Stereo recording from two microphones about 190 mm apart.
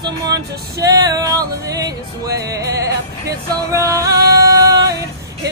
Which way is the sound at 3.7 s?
15° right (ahead or behind).